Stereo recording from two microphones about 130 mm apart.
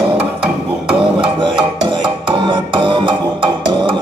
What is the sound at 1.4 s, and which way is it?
Music, 35° right (ahead or behind).